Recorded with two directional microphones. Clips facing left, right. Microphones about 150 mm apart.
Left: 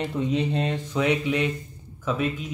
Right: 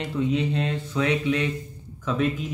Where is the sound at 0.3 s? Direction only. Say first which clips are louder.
Even; 20° left (ahead or behind).